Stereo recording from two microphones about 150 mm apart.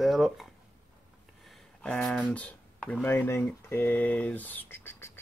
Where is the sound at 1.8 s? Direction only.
5° left (ahead or behind).